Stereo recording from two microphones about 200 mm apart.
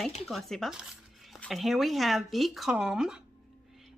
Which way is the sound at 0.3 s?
Centre (ahead or behind).